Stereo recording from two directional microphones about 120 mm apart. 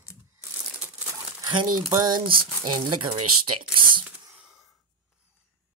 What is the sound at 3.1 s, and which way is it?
Speech, 45° right (ahead or behind).